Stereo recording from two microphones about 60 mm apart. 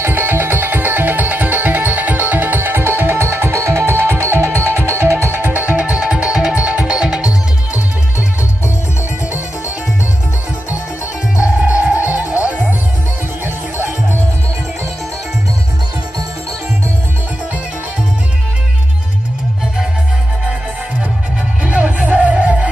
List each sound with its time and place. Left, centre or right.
0.0 s music: right
5.7 s music: right
7.0 s music: centre
11.4 s music: right
21.6 s music: right